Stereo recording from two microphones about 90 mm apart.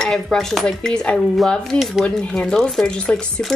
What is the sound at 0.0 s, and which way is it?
Speech, 5° left (ahead or behind).